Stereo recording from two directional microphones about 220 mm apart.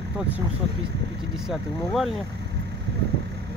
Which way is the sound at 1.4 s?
Centre (ahead or behind).